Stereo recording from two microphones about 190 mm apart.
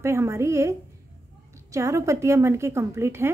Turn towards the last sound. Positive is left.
turn(degrees=-15)  # may be behind; listen again after turning